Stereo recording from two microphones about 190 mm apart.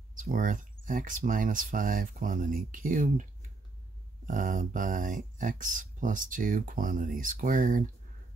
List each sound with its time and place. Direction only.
0.1 s speech: 45° right (ahead or behind)
4.3 s speech: 45° right (ahead or behind)